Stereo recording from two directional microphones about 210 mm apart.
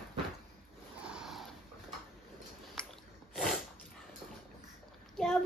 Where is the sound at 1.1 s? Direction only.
Centre (ahead or behind).